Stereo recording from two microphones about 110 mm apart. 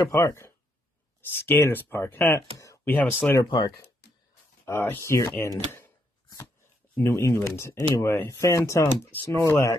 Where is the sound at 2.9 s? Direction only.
15° left (ahead or behind).